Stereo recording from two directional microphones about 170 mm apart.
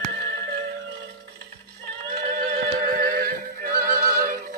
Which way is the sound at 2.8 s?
60° right (ahead or behind).